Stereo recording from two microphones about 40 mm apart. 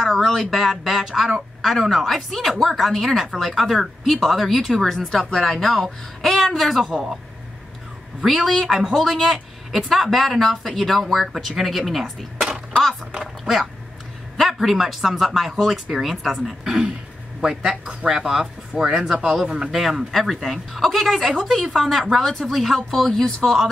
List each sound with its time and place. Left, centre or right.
0.0 s speech: centre
6.8 s speech: centre
8.2 s speech: centre
12.4 s a sound: right
14.4 s speech: centre
16.6 s a woman's voice: centre